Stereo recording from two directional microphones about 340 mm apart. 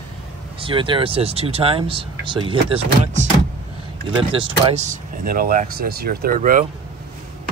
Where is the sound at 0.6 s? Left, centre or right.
Centre.